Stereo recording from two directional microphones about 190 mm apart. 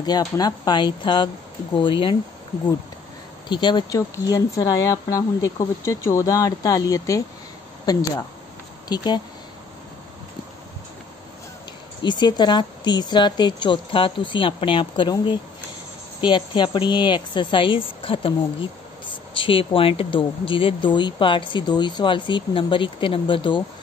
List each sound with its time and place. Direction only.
0.0 s speech: 20° left (ahead or behind)
3.4 s speech: 25° left (ahead or behind)
12.0 s speech: 25° left (ahead or behind)